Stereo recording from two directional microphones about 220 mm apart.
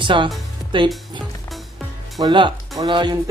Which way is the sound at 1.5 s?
Centre (ahead or behind).